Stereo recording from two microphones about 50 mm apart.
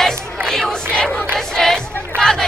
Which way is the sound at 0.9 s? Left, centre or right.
Centre.